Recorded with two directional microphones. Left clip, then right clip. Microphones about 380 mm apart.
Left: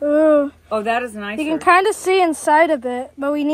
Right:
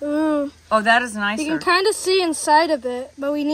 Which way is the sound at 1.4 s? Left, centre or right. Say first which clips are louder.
Left 5 dB; centre.